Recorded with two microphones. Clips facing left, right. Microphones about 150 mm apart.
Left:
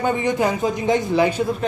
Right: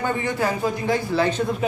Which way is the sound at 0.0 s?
20° left (ahead or behind).